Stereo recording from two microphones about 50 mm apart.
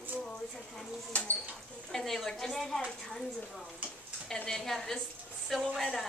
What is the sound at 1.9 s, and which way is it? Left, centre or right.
Speech, centre.